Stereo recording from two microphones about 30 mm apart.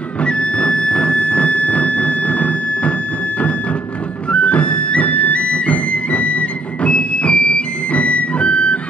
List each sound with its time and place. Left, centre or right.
0.2 s music: left
4.3 s music: left
7.9 s music: left